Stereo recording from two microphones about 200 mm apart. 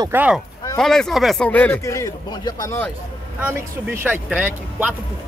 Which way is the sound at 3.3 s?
10° right (ahead or behind).